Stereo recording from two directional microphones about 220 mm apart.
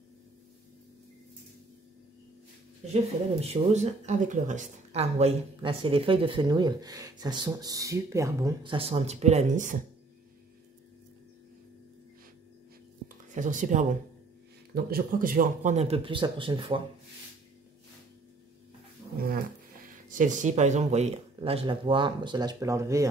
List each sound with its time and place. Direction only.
2.9 s speech: 30° right (ahead or behind)
13.3 s speech: 35° right (ahead or behind)
20.1 s speech: 35° right (ahead or behind); by 23.0 s 15° right (ahead or behind)